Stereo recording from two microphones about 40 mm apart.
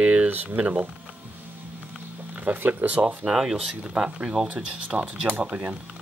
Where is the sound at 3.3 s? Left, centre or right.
Centre.